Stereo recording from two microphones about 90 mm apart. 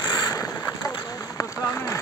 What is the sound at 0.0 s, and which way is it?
Boat, 40° left (ahead or behind).